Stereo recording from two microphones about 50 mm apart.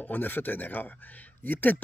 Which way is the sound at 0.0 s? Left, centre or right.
Left.